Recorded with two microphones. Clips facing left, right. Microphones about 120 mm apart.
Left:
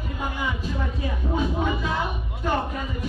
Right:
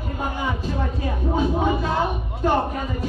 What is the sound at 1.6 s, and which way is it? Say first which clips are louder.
Speech: right 4 dB; 35° right (ahead or behind).